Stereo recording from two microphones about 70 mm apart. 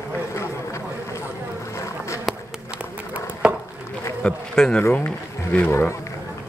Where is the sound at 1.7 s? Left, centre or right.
Left.